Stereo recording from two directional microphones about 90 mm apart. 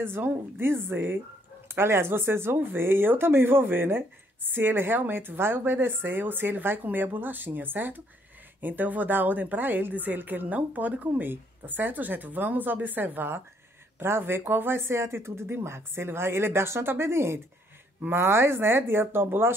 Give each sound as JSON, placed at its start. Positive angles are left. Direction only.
{"t": 0.0, "sound": "a woman's voice", "side_deg": -25}